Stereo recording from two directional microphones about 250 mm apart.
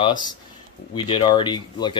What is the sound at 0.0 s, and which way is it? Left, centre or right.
Speech, centre.